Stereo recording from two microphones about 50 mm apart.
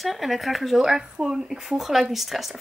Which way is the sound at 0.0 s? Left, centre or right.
Centre.